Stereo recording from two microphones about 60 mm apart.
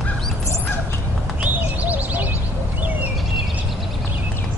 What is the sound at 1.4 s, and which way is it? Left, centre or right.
Bird, right.